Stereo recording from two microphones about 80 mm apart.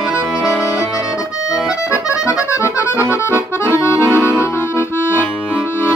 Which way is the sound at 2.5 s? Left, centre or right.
Left.